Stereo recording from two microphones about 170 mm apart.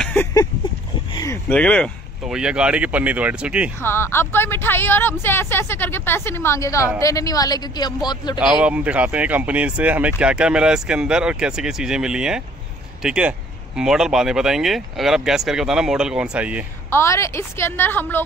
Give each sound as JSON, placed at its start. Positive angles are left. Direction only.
{"t": 0.0, "sound": "a sound", "side_deg": 10}
{"t": 1.5, "sound": "speech", "side_deg": 5}
{"t": 2.3, "sound": "speech", "side_deg": -5}
{"t": 3.8, "sound": "a woman's voice", "side_deg": 15}
{"t": 8.4, "sound": "speech", "side_deg": -5}
{"t": 16.9, "sound": "a woman's voice", "side_deg": 15}